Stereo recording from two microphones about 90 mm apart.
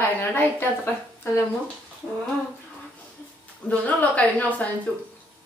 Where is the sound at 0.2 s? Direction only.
25° left (ahead or behind).